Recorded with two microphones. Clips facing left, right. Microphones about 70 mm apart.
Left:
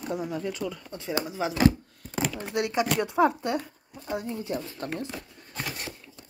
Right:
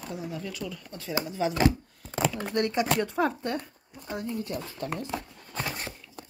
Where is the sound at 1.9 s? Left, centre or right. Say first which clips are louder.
Right 2 dB; centre.